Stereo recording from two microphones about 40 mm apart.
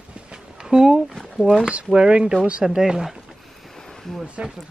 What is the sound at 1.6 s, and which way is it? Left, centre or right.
Speech, right.